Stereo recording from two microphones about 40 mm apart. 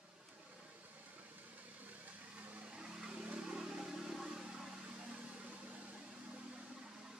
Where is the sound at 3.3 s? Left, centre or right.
Right.